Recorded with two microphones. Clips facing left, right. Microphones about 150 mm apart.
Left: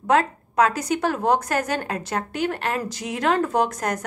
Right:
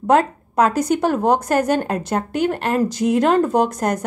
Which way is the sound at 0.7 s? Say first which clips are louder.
Right 5 dB; 45° right (ahead or behind).